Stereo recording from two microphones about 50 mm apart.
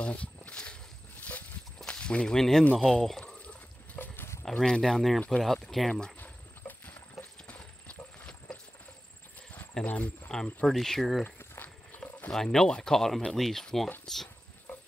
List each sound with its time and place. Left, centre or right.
0.0 s a sound: left
1.9 s speech: left
4.5 s speech: centre
6.9 s clip-clop: left
9.8 s speech: left
10.2 s speech: centre
10.7 s speech: centre
11.2 s walk: left
12.3 s speech: centre